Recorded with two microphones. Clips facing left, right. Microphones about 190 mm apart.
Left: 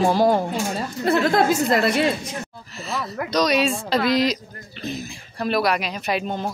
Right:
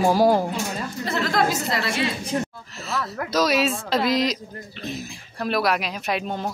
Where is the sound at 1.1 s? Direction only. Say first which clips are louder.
Left 5 dB; 55° left (ahead or behind).